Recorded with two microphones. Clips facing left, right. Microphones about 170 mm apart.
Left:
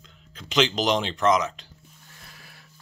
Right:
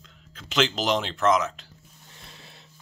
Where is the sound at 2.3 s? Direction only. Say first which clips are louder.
Right 2 dB; 25° right (ahead or behind).